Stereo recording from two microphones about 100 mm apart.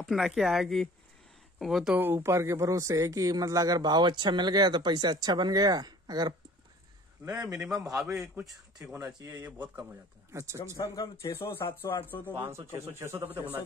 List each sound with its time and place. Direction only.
0.0 s speech: centre (ahead or behind)
2.0 s speech: 20° right (ahead or behind); by 6.3 s 45° right (ahead or behind)
7.2 s speech: 30° right (ahead or behind)
7.6 s speech: 5° right (ahead or behind)
8.9 s speech: 30° right (ahead or behind)
9.3 s speech: 20° right (ahead or behind)
10.3 s speech: 30° right (ahead or behind)
10.8 s speech: 35° left (ahead or behind)
12.4 s speech: 25° right (ahead or behind)